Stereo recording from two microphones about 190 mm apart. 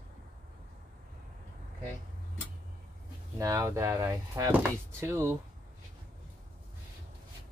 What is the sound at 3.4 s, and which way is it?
Speech, 15° right (ahead or behind).